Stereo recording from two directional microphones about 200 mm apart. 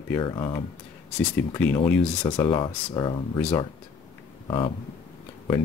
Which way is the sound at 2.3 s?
25° left (ahead or behind).